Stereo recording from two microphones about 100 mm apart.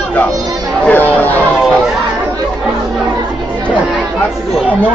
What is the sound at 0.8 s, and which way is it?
Speech, 15° left (ahead or behind).